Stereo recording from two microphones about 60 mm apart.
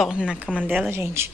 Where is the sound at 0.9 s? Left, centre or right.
Right.